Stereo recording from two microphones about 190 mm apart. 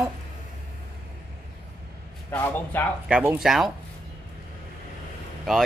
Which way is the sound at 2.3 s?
10° left (ahead or behind).